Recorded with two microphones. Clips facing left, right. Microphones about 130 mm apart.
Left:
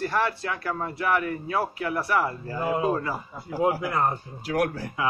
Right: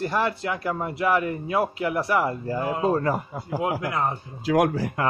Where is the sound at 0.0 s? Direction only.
20° right (ahead or behind).